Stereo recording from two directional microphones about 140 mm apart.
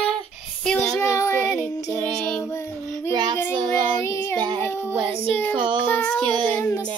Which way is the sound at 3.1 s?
30° right (ahead or behind).